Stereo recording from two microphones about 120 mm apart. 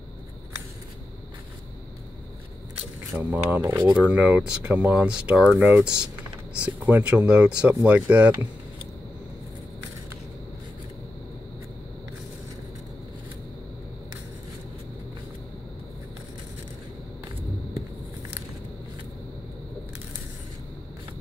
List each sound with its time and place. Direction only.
3.1 s speech: 15° right (ahead or behind)